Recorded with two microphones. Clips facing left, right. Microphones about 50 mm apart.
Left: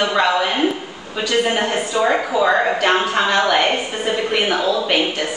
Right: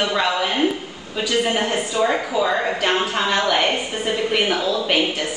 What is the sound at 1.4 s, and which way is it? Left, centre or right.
A woman's voice, centre.